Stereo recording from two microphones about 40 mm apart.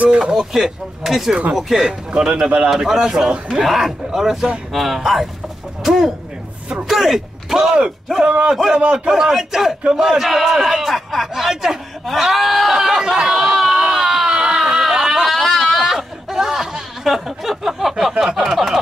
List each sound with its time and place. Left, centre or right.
0.4 s a man's voice: centre
1.9 s speech: right
2.7 s a man's voice: centre
8.3 s a man's voice: right
8.7 s a man's voice: centre
12.7 s chatter: centre
13.7 s a sound: centre
15.2 s a sound: centre
18.2 s a man's voice: centre